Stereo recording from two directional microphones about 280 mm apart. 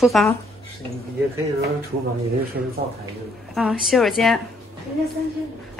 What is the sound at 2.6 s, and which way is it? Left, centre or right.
Speech, right.